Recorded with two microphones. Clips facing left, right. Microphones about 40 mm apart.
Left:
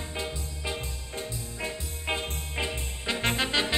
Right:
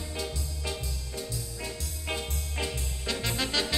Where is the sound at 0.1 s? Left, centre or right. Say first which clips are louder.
Even; left.